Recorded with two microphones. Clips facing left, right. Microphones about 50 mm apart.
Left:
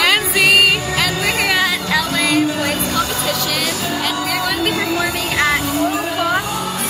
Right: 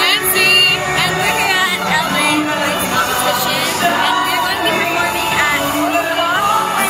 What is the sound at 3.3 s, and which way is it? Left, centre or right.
Music, centre.